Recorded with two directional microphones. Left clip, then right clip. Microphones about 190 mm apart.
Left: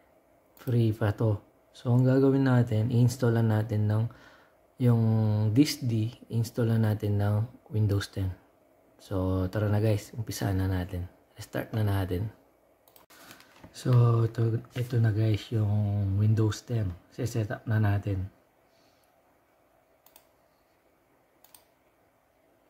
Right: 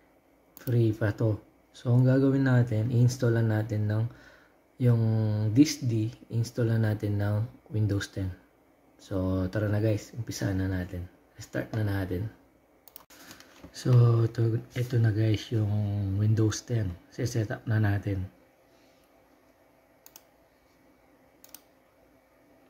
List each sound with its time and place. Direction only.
0.6 s speech: 20° left (ahead or behind)
13.7 s speech: 10° left (ahead or behind)